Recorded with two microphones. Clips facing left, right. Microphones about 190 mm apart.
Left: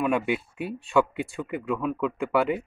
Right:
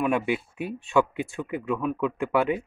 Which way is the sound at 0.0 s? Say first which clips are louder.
Even; centre (ahead or behind).